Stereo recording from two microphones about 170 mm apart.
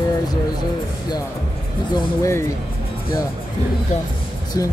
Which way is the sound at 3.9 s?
45° left (ahead or behind).